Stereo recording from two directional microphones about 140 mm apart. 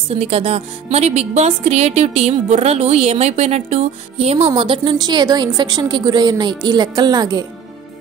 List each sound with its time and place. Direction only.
0.1 s speech: 45° right (ahead or behind); by 7.4 s 30° right (ahead or behind)